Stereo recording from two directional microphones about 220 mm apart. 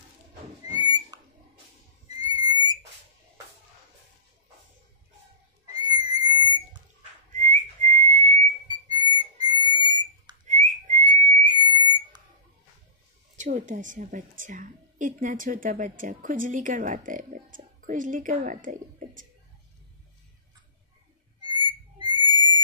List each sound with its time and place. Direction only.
0.7 s a sound: 20° right (ahead or behind)
2.3 s whistle: 20° right (ahead or behind)
5.7 s whistle: 20° right (ahead or behind)
6.1 s a sound: 20° right (ahead or behind)
7.3 s whistling: 35° right (ahead or behind)
8.7 s whistle: 20° right (ahead or behind)
10.4 s whistling: 35° right (ahead or behind)
11.5 s whistle: 20° right (ahead or behind)
13.4 s a woman's voice: 35° right (ahead or behind)
21.4 s whistle: 20° right (ahead or behind)